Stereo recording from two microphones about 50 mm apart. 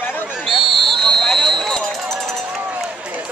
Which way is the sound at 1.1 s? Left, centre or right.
Centre.